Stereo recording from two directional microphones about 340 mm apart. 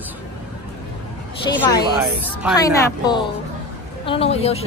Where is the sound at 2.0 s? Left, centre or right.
Centre.